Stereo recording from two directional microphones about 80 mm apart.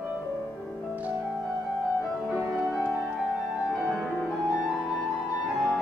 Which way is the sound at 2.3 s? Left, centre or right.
Centre.